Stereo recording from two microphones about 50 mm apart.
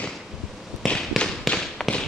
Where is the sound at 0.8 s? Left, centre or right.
Centre.